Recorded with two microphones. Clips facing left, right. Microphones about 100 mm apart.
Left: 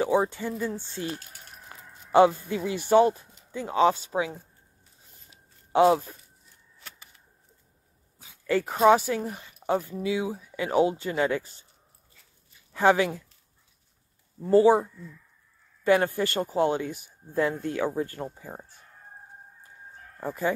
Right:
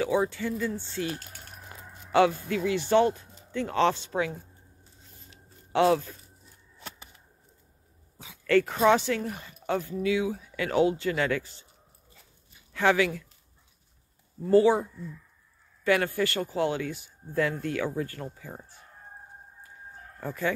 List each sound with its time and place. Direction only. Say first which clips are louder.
0.0 s speech: left 2 dB; 20° left (ahead or behind)
2.4 s speech: right 2 dB; 20° left (ahead or behind)
5.3 s a sound: left 3 dB; 20° left (ahead or behind)
8.5 s speech: left 1 dB; 15° left (ahead or behind)
12.7 s speech: left 2 dB; 20° left (ahead or behind)
14.4 s speech: left 2 dB; 20° left (ahead or behind)
15.8 s speech: left 3 dB; 20° left (ahead or behind)
20.2 s chicken: left 2 dB; 15° left (ahead or behind)